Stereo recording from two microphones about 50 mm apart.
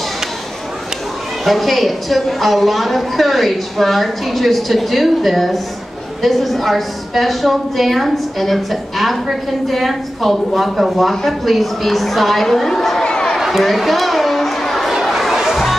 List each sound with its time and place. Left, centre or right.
1.4 s a woman's voice: centre
13.0 s a sound: centre
13.4 s chatter: centre